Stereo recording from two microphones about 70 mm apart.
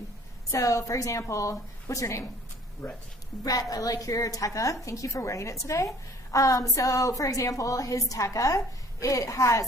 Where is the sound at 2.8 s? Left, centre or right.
Centre.